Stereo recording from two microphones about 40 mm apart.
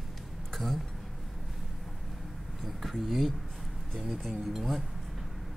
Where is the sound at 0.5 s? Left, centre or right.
Centre.